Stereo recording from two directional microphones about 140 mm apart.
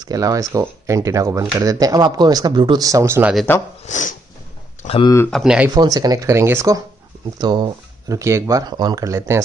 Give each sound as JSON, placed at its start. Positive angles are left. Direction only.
{"t": 0.0, "sound": "speech", "side_deg": -25}
{"t": 3.8, "sound": "speech", "side_deg": 65}
{"t": 4.8, "sound": "speech", "side_deg": 40}
{"t": 5.3, "sound": "speech", "side_deg": -5}
{"t": 5.8, "sound": "speech", "side_deg": -25}
{"t": 7.3, "sound": "speech", "side_deg": -30}
{"t": 8.2, "sound": "speech", "side_deg": -20}